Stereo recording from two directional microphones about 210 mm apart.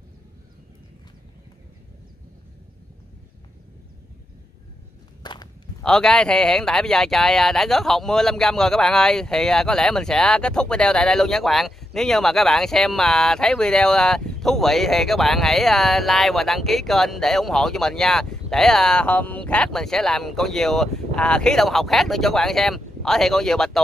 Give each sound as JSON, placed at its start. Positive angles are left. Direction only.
{"t": 5.2, "sound": "walk", "side_deg": 20}
{"t": 5.8, "sound": "speech", "side_deg": 5}